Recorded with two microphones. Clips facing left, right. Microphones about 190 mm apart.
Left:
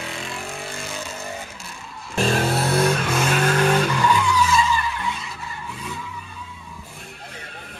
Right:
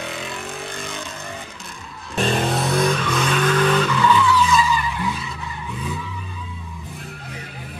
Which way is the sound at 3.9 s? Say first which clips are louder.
Right 2 dB; 15° left (ahead or behind).